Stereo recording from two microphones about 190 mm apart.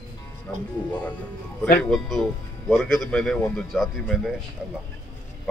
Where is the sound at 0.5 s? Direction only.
10° left (ahead or behind).